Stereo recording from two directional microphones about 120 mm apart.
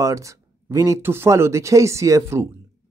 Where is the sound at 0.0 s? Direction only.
25° right (ahead or behind).